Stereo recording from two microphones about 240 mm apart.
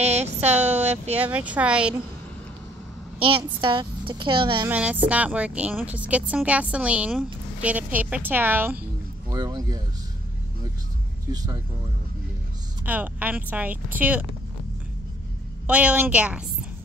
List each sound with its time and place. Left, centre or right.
0.0 s a sound: right
0.6 s a sound: centre
1.1 s speech: centre
3.6 s speech: centre
4.6 s speech: centre
12.8 s speech: centre
15.6 s speech: centre